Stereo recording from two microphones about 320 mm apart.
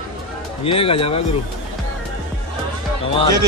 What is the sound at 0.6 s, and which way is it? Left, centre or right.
Speech, centre.